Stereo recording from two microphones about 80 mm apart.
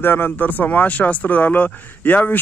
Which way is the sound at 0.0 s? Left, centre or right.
Left.